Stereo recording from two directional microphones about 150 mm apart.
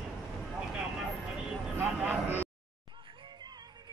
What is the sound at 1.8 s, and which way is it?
Speech, 15° right (ahead or behind).